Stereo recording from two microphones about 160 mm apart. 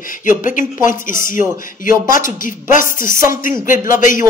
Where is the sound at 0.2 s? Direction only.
55° left (ahead or behind).